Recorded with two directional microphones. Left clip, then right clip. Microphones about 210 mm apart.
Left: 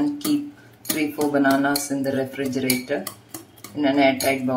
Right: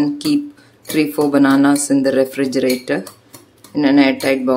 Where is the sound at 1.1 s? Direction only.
55° right (ahead or behind).